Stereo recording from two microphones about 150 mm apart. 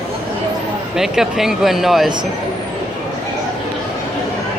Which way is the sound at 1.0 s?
5° right (ahead or behind).